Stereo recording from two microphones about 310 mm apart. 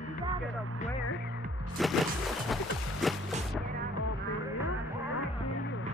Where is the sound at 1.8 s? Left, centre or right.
Centre.